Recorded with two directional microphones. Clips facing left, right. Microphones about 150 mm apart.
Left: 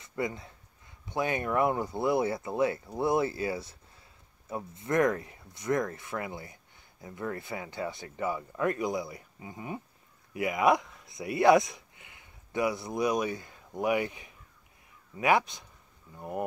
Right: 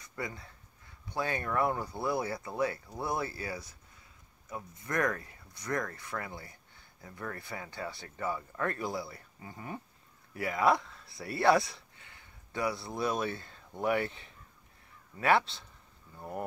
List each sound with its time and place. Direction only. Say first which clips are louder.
0.0 s speech: left 7 dB; 20° left (ahead or behind)